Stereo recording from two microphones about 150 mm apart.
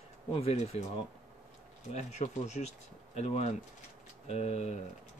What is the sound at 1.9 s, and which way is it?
Speech, 50° left (ahead or behind).